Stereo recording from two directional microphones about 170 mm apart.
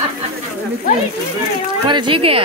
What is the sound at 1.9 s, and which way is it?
Speech, 30° right (ahead or behind).